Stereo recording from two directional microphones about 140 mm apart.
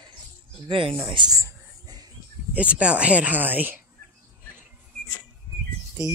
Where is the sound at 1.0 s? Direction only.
30° right (ahead or behind).